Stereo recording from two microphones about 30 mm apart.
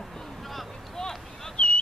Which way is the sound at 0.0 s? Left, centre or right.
Centre.